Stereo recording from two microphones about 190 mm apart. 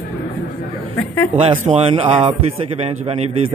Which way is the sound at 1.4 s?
35° right (ahead or behind).